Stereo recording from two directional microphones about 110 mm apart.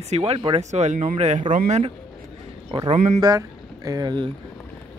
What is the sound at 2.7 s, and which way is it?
Speech, 50° right (ahead or behind).